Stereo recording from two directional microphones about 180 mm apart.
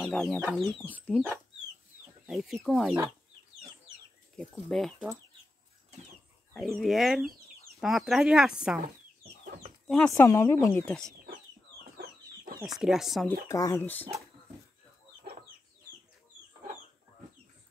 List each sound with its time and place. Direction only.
0.0 s speech: 5° left (ahead or behind)
2.2 s speech: centre (ahead or behind)
4.4 s speech: centre (ahead or behind)
6.5 s speech: centre (ahead or behind)
9.4 s chicken: 45° right (ahead or behind)
9.8 s speech: 5° left (ahead or behind)
10.1 s speech: 15° left (ahead or behind)
12.6 s speech: centre (ahead or behind)
13.5 s speech: 20° left (ahead or behind)